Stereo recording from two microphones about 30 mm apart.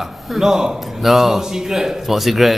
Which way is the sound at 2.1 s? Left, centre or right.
Centre.